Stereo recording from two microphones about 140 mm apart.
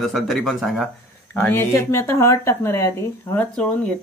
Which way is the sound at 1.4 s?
15° left (ahead or behind).